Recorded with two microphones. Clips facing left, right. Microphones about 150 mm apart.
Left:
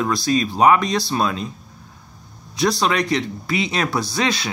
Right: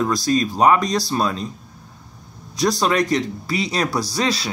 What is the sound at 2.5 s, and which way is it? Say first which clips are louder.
Speech: right 1 dB; 45° right (ahead or behind).